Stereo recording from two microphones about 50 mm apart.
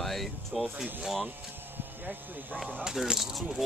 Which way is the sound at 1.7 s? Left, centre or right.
Right.